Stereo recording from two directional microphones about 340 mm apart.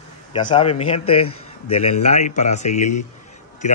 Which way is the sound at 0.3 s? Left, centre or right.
Centre.